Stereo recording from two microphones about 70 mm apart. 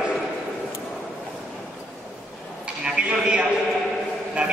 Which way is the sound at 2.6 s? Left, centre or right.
Centre.